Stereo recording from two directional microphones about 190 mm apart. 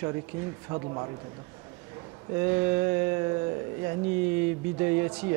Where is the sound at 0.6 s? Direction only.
25° right (ahead or behind).